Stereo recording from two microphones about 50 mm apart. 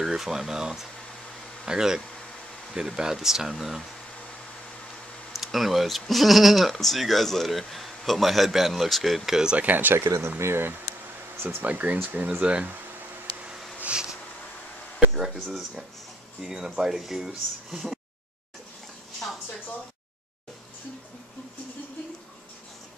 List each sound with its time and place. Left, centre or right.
0.0 s speech: centre
5.3 s speech: centre
9.5 s speech: right
9.9 s speech: right
11.4 s speech: right
12.4 s speech: right
15.1 s speech: centre